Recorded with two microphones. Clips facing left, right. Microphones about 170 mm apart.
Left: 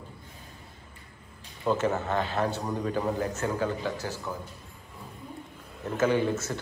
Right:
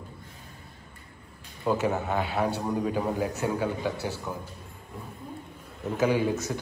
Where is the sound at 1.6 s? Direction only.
15° right (ahead or behind).